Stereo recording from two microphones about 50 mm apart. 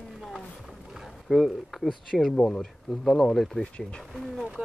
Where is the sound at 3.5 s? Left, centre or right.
Centre.